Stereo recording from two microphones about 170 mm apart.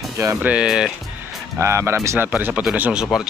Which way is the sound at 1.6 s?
15° right (ahead or behind).